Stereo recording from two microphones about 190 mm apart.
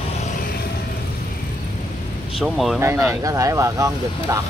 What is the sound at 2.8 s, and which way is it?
Speech, 15° right (ahead or behind).